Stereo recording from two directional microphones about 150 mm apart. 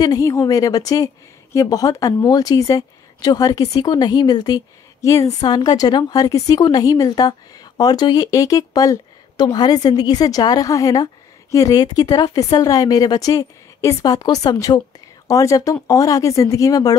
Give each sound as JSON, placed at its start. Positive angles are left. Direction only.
{"t": 0.0, "sound": "a woman's voice", "side_deg": 25}